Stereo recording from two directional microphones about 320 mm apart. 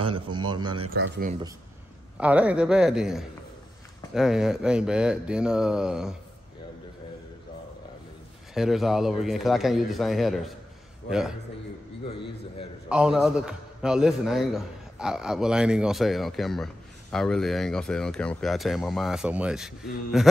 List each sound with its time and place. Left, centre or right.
0.0 s a man's voice: centre
0.9 s speech: right
2.1 s a man's voice: centre
8.5 s a man's voice: centre
12.9 s a man's voice: centre